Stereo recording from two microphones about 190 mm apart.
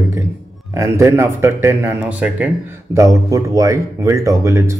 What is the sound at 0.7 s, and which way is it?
Speech, 15° right (ahead or behind).